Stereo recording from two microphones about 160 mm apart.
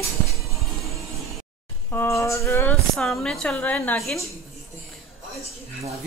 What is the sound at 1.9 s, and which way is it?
Speech, 15° left (ahead or behind).